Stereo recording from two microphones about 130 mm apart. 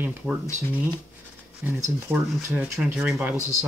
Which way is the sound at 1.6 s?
20° right (ahead or behind).